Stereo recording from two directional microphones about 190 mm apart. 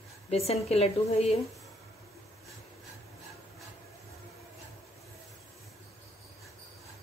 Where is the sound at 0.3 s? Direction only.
35° left (ahead or behind).